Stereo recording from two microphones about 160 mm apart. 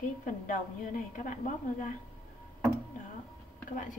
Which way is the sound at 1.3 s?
50° left (ahead or behind).